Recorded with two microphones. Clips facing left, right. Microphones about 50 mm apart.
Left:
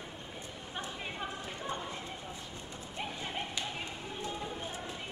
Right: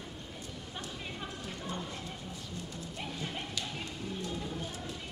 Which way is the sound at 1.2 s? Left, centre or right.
Left.